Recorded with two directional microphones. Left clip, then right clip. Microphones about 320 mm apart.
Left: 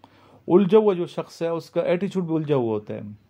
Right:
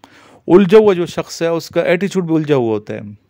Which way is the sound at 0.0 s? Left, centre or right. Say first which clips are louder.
Right 9 dB; right.